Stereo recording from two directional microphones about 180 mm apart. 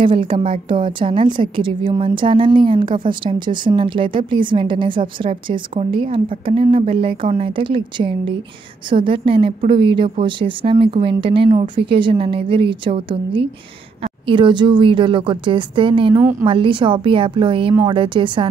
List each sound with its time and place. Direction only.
0.0 s a woman's voice: 30° right (ahead or behind)
16.2 s a woman's voice: 10° right (ahead or behind)
16.4 s a woman's voice: 25° right (ahead or behind)